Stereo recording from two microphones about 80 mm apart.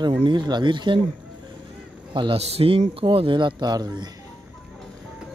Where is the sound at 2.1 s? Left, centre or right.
Right.